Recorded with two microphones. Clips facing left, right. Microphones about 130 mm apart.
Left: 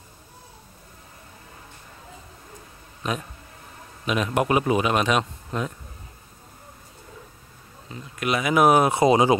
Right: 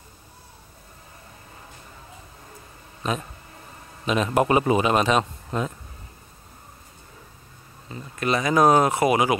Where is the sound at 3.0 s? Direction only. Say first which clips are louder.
Right 1 dB; centre (ahead or behind).